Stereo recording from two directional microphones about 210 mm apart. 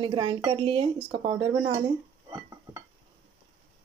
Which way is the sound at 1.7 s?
15° right (ahead or behind).